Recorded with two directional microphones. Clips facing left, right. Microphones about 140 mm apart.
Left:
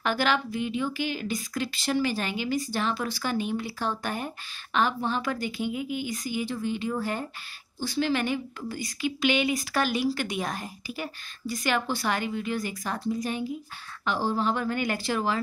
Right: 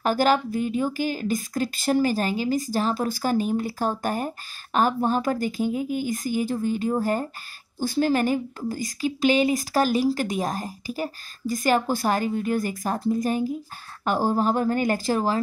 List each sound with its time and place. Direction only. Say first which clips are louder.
0.0 s a woman's voice: right 5 dB; 40° right (ahead or behind)